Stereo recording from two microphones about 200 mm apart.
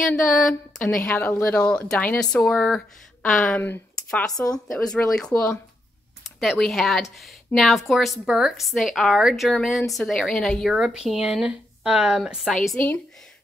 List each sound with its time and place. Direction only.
0.0 s a woman's voice: centre (ahead or behind)